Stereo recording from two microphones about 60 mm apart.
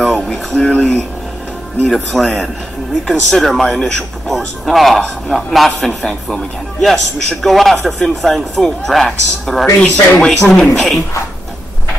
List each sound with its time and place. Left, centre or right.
0.0 s music: centre
2.1 s speech: centre